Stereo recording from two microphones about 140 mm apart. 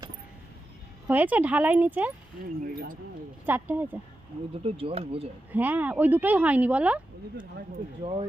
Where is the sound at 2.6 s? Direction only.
90° right.